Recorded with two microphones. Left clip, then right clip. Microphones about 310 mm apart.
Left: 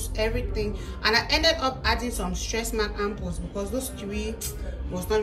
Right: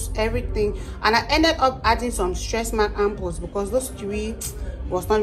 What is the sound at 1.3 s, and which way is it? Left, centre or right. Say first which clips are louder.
A woman's voice: right 4 dB; centre.